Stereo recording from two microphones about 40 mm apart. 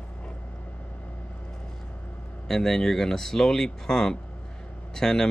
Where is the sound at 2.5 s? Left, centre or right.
Centre.